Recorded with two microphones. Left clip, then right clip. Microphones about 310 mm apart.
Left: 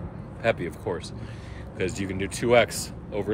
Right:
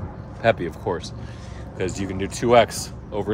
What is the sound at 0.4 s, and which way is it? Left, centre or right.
Speech, centre.